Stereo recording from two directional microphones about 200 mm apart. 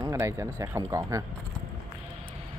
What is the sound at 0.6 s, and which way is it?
Speech, 15° right (ahead or behind).